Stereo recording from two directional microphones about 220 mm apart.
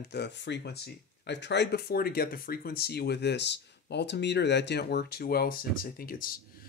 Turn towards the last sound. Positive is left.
turn(degrees=40)  # may be behind; listen again after turning